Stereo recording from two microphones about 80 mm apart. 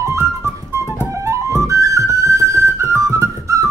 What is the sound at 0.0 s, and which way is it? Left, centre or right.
Music, right.